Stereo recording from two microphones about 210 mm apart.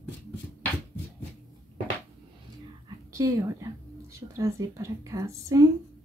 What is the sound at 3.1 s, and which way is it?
Whispering, 15° right (ahead or behind).